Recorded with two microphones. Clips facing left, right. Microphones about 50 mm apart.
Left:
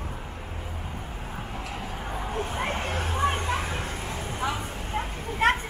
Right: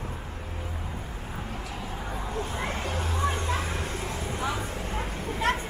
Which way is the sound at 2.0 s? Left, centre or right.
Left.